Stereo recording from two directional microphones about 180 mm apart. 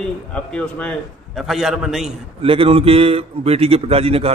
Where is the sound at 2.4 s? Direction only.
30° right (ahead or behind).